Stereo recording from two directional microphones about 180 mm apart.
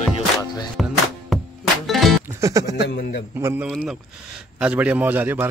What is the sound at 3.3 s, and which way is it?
Speech, 15° right (ahead or behind).